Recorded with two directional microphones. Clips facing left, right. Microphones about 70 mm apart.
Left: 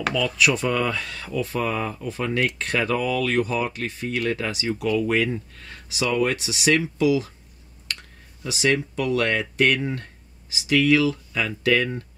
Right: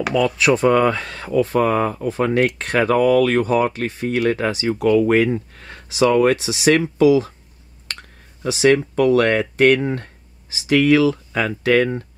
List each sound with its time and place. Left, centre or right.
0.4 s speech: right
11.3 s speech: right